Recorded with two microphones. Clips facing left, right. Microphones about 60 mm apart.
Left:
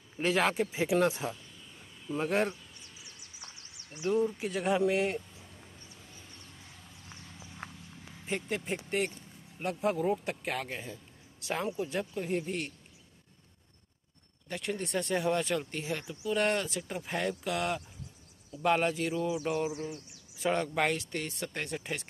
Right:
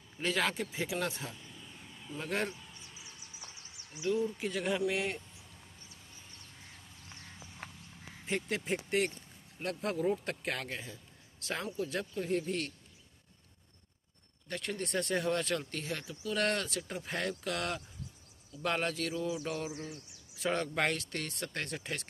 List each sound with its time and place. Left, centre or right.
0.2 s speech: left
4.0 s speech: left
4.3 s speech: centre
8.3 s speech: centre
10.0 s speech: centre
14.5 s speech: centre